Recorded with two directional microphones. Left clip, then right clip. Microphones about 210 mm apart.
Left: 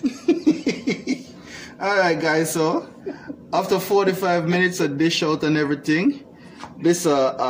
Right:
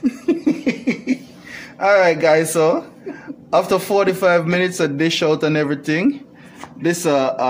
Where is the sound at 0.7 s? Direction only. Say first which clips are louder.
Right 3 dB; 40° right (ahead or behind).